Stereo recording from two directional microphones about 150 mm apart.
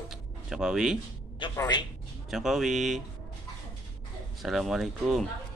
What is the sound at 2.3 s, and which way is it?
Speech, centre (ahead or behind).